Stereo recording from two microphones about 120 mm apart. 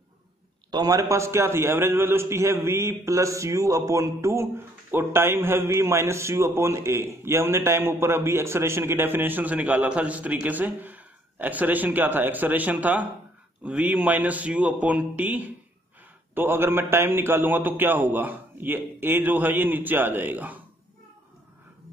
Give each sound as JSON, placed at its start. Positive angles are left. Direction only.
{"t": 0.7, "sound": "a man's voice", "side_deg": -30}